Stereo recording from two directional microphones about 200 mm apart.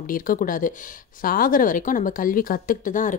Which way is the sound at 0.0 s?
45° left (ahead or behind).